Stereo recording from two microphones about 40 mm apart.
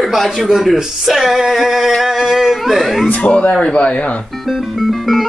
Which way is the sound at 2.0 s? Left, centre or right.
Centre.